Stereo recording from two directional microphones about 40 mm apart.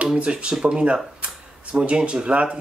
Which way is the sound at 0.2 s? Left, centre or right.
Right.